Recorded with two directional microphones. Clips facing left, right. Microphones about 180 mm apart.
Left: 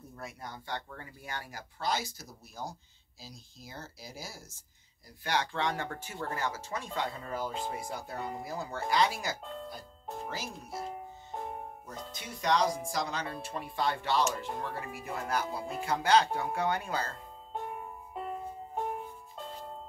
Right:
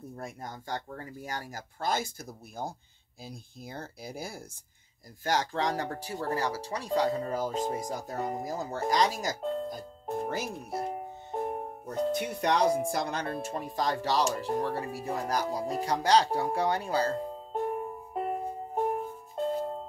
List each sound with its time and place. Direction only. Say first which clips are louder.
0.2 s speech: right 1 dB; 45° right (ahead or behind)
5.2 s speech: right 3 dB; 40° right (ahead or behind)
18.1 s music: right 6 dB; 50° right (ahead or behind)